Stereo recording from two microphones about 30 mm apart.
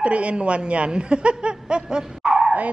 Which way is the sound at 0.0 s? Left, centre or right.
Right.